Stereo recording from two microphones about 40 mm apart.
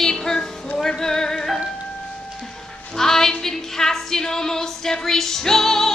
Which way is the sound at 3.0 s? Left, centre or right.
Centre.